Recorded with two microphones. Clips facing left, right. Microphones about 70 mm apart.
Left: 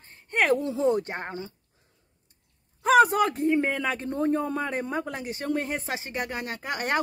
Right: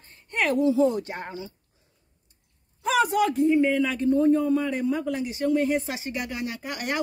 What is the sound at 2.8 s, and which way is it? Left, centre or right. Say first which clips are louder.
A man's voice: left 3 dB; left.